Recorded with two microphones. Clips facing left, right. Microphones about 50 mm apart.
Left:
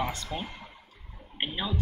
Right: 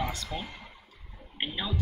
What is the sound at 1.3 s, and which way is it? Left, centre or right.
Speech, centre.